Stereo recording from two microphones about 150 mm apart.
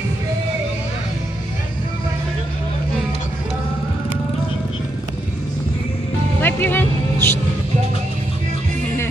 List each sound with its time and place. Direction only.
6.4 s music: 15° left (ahead or behind)